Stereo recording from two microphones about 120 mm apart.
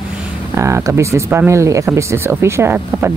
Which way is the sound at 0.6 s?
25° right (ahead or behind).